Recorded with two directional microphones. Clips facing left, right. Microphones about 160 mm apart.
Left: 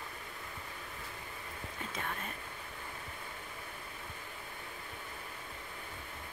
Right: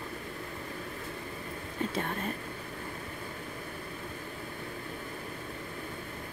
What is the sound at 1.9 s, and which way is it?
Speech, 35° right (ahead or behind).